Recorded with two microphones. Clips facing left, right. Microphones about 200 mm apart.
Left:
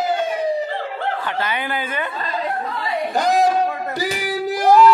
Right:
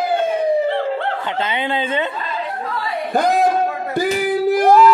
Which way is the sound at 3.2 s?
55° right (ahead or behind).